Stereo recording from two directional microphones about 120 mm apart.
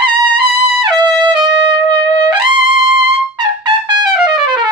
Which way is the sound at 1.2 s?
40° right (ahead or behind).